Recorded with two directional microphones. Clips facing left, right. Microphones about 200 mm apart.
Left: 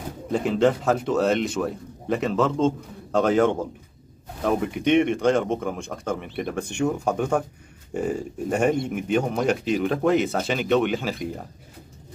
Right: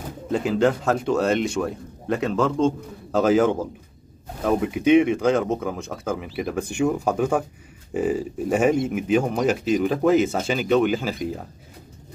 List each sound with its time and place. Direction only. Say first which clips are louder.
0.3 s speech: even; centre (ahead or behind)